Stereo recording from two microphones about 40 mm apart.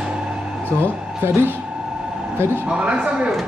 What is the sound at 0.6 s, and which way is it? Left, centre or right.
Speech, left.